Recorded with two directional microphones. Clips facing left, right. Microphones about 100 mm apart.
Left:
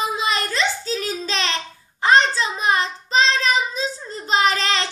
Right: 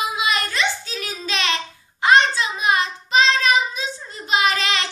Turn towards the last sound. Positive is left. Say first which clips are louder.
# left 1 dB
turn(degrees=35)  # may be behind; listen again after turning